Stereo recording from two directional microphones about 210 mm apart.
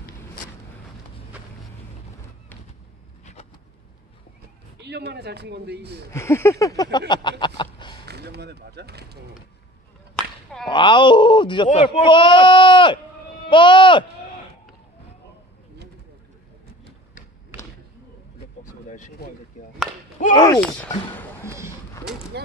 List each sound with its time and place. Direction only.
4.7 s a man's voice: 50° right (ahead or behind)
6.1 s speech: 10° left (ahead or behind)
8.0 s a sound: 50° right (ahead or behind)
10.1 s whip: 5° left (ahead or behind)
10.7 s speech: 20° left (ahead or behind)
18.9 s speech: 35° left (ahead or behind)
20.3 s speech: 20° left (ahead or behind)
21.1 s speech: 10° left (ahead or behind)
21.5 s speech: 15° right (ahead or behind)